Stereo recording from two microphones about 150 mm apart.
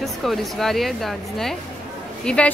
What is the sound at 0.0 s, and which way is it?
A woman's voice, centre (ahead or behind).